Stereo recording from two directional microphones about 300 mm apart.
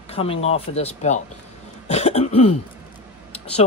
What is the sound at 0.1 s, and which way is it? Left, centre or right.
Speech, centre.